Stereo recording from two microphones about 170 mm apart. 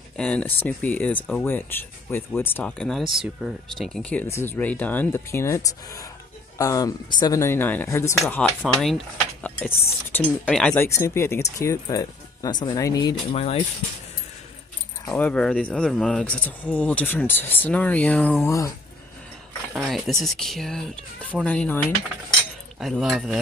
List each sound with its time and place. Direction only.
0.2 s speech: 10° left (ahead or behind)
8.4 s speech: 5° left (ahead or behind); by 13.1 s 20° left (ahead or behind)
13.3 s speech: 35° left (ahead or behind)
15.0 s speech: 10° left (ahead or behind)
18.4 s speech: 20° left (ahead or behind)
19.7 s speech: centre (ahead or behind)
22.8 s speech: centre (ahead or behind)